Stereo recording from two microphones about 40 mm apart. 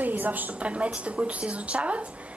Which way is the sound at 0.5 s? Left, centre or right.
Right.